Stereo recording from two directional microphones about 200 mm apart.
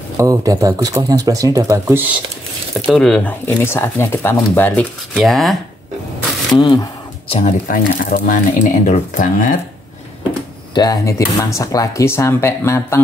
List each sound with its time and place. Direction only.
0.2 s speech: 15° right (ahead or behind)
2.9 s speech: 5° left (ahead or behind)
6.5 s speech: 20° left (ahead or behind); by 9.6 s 40° left (ahead or behind)
10.7 s speech: 20° left (ahead or behind)